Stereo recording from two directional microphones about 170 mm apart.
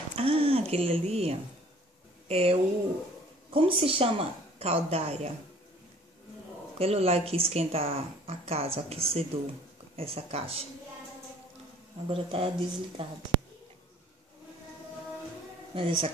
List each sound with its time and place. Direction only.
0.1 s a woman's voice: 35° right (ahead or behind)
6.8 s a woman's voice: 35° right (ahead or behind)
12.1 s a woman's voice: 35° right (ahead or behind)
15.7 s speech: 30° right (ahead or behind)